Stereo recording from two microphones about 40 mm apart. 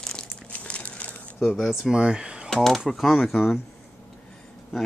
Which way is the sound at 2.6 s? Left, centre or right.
Centre.